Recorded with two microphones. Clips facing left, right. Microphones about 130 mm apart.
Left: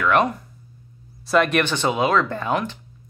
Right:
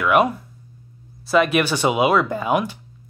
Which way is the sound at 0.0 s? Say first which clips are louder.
Right 2 dB; 10° right (ahead or behind).